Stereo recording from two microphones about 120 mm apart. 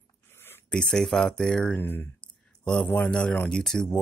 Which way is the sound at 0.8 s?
5° left (ahead or behind).